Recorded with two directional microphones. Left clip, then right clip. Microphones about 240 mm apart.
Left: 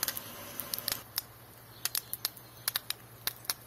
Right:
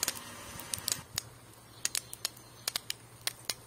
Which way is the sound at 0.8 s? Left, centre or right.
Right.